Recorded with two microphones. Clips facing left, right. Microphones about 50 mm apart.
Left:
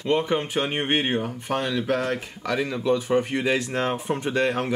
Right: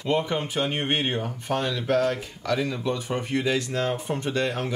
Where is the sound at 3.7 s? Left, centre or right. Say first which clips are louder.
Left 1 dB; left.